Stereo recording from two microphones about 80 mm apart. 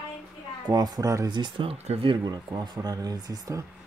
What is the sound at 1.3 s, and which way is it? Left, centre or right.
Speech, right.